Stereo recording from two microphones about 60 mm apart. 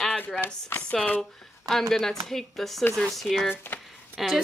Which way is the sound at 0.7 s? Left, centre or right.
Left.